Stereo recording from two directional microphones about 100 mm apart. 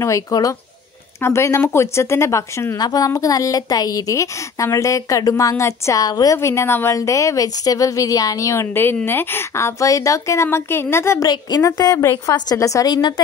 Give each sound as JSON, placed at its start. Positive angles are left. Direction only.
{"t": 0.0, "sound": "a woman's voice", "side_deg": 35}
{"t": 2.8, "sound": "a woman's voice", "side_deg": 40}
{"t": 6.3, "sound": "a woman's voice", "side_deg": 30}
{"t": 11.2, "sound": "a woman's voice", "side_deg": 45}